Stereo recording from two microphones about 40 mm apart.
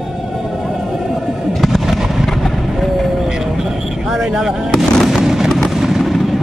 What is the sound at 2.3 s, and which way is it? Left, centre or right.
Vehicle, centre.